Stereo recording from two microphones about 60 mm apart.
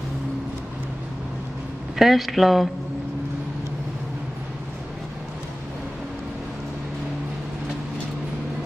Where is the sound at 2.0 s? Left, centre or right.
Centre.